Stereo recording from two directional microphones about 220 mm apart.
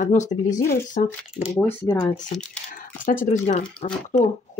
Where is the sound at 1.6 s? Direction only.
15° left (ahead or behind).